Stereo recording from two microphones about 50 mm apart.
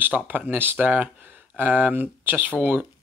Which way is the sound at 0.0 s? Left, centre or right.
Right.